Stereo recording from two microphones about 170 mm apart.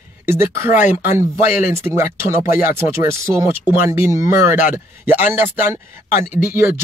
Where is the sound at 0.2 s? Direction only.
15° right (ahead or behind).